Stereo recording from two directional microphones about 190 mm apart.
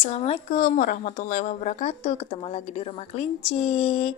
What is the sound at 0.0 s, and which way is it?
A woman's voice, 35° left (ahead or behind).